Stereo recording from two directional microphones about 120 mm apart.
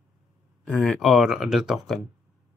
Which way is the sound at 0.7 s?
10° left (ahead or behind).